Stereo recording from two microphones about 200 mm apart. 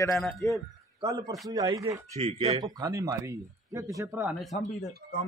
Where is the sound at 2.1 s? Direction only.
30° right (ahead or behind).